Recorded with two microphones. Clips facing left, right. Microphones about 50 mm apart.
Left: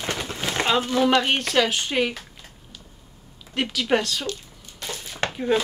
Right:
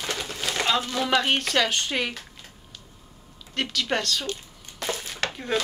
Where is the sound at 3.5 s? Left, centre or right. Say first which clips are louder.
Left 4 dB; centre.